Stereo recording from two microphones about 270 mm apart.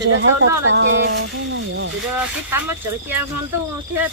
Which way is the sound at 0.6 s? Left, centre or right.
Right.